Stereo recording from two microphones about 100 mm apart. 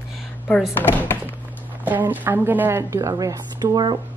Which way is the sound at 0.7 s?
20° left (ahead or behind).